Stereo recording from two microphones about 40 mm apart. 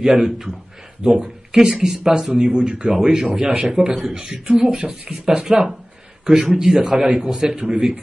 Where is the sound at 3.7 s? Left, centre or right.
Right.